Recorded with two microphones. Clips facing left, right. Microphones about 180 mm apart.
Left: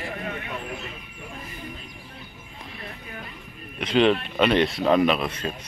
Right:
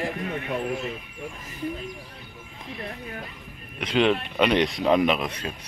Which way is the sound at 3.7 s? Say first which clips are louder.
Left 2 dB; 10° right (ahead or behind).